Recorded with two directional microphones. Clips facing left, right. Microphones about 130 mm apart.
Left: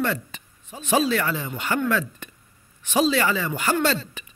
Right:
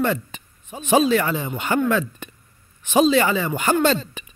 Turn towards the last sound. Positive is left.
turn(degrees=-20)  # may be behind; listen again after turning